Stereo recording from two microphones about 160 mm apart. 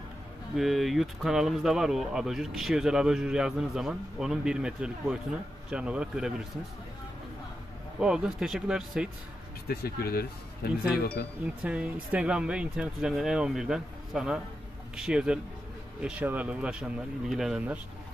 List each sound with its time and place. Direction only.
0.6 s speech: centre (ahead or behind)
8.0 s speech: 5° right (ahead or behind)
9.7 s speech: 70° left (ahead or behind)
11.6 s speech: 10° right (ahead or behind)